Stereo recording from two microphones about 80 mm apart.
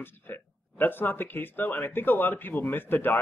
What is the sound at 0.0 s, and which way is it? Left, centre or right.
Speech, left.